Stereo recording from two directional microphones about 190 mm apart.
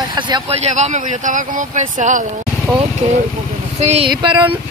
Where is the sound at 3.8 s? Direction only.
35° right (ahead or behind).